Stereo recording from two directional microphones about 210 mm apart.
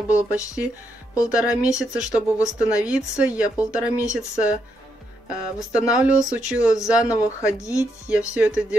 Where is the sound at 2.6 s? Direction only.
5° right (ahead or behind).